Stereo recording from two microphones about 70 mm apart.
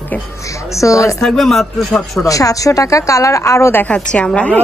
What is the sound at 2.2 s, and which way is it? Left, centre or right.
A woman's voice, left.